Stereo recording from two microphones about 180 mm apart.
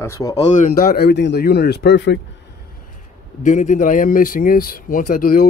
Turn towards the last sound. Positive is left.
turn(degrees=55)  # may be behind; listen again after turning